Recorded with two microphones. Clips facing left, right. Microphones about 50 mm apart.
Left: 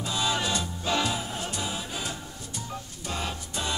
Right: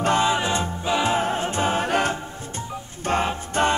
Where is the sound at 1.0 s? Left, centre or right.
Right.